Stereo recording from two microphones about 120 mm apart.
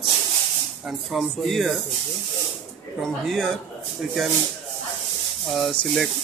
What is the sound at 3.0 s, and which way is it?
Speech, 5° left (ahead or behind).